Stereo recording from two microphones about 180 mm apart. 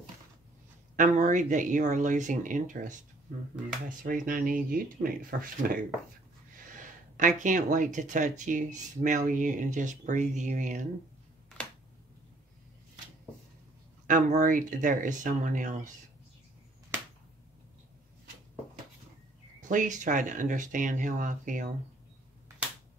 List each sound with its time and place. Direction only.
0.9 s speech: 45° right (ahead or behind)
4.0 s speech: 50° right (ahead or behind)
6.8 s speech: 45° right (ahead or behind)
14.0 s speech: 45° right (ahead or behind)
19.7 s speech: 45° right (ahead or behind)